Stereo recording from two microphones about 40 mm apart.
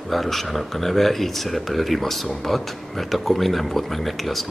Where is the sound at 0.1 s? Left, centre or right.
Centre.